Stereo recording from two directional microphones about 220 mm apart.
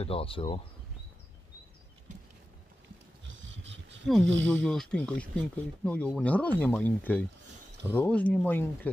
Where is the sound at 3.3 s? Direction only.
55° right (ahead or behind).